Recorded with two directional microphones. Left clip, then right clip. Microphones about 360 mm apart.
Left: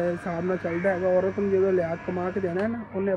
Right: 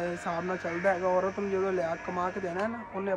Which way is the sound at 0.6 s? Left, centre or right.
Centre.